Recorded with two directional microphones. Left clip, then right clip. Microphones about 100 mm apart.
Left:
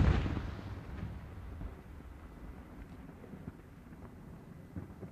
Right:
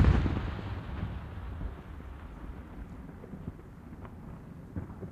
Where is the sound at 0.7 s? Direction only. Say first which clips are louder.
Right 6 dB; 30° right (ahead or behind).